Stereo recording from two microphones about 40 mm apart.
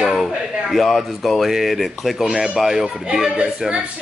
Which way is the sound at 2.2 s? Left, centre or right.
Centre.